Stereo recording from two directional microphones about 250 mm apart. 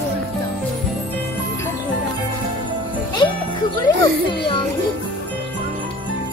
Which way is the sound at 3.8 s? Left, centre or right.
Centre.